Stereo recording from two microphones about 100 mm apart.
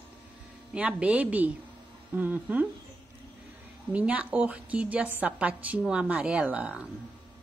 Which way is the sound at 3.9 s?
15° right (ahead or behind).